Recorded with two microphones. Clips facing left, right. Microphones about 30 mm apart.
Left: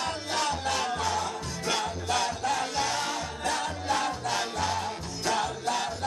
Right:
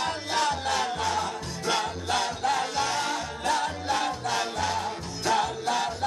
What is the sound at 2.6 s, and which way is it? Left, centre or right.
Music, centre.